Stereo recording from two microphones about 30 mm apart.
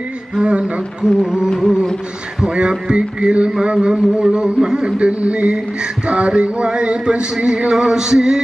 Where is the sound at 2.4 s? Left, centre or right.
Right.